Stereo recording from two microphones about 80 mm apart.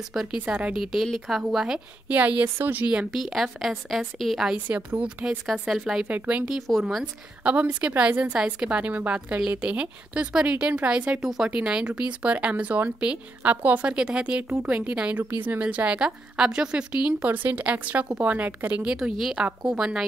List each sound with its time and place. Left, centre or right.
0.1 s speech: centre
0.5 s speech: centre
0.7 s speech: centre
2.0 s speech: centre
4.6 s speech: centre
6.8 s speech: centre
7.4 s a woman's voice: centre
17.2 s a woman's voice: right
18.9 s speech: centre